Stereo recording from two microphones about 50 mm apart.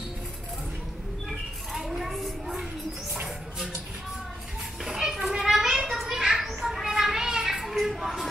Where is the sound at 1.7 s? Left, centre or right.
Centre.